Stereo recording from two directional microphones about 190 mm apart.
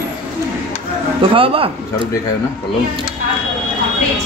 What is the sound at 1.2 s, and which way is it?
Speech, 30° right (ahead or behind).